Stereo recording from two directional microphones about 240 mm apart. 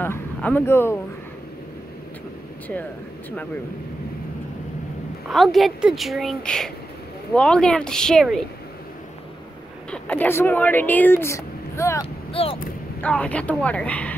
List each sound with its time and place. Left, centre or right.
0.0 s speech: centre
5.3 s a woman's voice: centre
9.8 s speech: centre
12.3 s speech: left
13.0 s a woman's voice: centre